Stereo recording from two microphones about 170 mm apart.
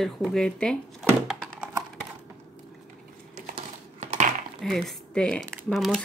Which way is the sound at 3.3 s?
50° right (ahead or behind).